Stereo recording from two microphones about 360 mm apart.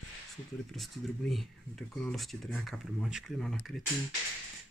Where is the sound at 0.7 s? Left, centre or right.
Centre.